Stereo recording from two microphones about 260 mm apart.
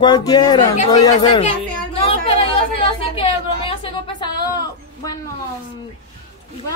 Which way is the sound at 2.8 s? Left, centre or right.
Left.